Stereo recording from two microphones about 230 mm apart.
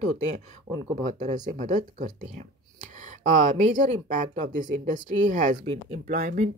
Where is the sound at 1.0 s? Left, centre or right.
Right.